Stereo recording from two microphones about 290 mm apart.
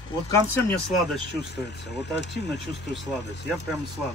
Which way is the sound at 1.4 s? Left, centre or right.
Left.